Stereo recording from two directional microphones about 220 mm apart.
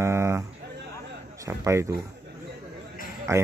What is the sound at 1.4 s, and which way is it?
Speech, 15° right (ahead or behind).